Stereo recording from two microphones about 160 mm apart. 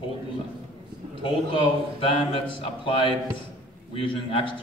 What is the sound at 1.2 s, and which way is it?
A man's voice, 35° left (ahead or behind).